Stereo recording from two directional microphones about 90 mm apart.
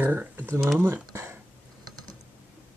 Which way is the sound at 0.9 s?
35° right (ahead or behind).